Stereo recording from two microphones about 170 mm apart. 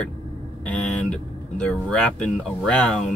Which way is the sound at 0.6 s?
10° left (ahead or behind).